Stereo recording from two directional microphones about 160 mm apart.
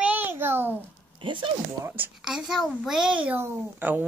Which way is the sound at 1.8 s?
10° right (ahead or behind).